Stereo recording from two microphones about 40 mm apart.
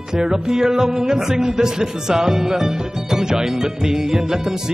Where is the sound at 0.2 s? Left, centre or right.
Centre.